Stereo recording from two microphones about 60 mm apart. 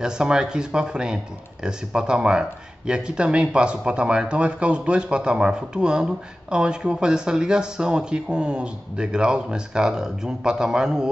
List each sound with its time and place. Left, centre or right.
0.0 s speech: centre